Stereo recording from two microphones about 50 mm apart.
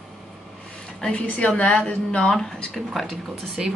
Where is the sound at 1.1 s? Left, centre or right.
Left.